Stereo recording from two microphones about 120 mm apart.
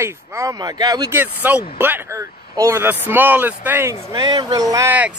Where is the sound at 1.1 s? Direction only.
15° right (ahead or behind).